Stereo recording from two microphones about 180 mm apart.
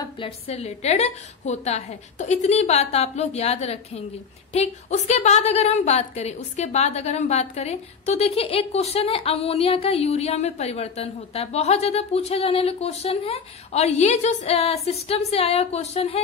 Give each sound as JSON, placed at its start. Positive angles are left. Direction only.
{"t": 0.0, "sound": "a woman's voice", "side_deg": 30}